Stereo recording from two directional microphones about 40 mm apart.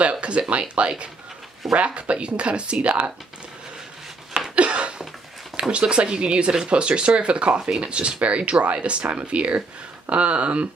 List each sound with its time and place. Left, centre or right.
0.0 s speech: right
4.6 s a sound: right
5.6 s speech: right